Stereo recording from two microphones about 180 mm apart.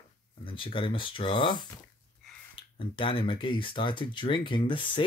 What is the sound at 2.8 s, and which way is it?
Speech, 30° left (ahead or behind).